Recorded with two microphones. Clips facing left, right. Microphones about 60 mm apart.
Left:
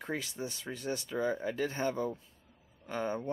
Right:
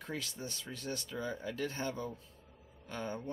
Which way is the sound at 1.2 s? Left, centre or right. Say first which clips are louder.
Left 7 dB; left.